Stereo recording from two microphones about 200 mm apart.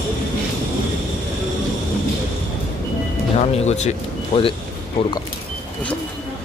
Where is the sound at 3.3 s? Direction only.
35° left (ahead or behind).